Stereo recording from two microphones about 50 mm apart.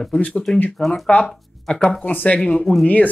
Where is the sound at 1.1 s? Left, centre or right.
Left.